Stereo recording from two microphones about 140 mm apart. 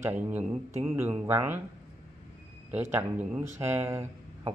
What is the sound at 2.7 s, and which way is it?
Speech, 10° right (ahead or behind).